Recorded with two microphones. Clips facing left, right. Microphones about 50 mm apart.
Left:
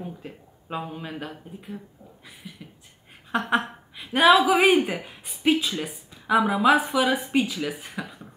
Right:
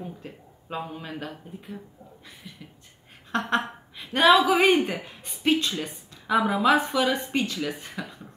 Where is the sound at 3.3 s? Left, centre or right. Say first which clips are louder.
Left 2 dB; centre.